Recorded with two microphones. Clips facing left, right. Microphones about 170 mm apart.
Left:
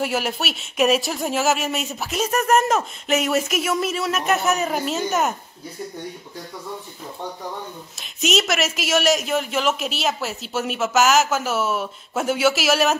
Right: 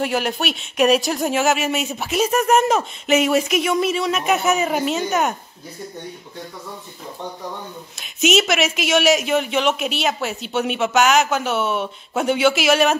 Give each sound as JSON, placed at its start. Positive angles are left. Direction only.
{"t": 0.0, "sound": "speech", "side_deg": 5}
{"t": 8.0, "sound": "speech", "side_deg": 0}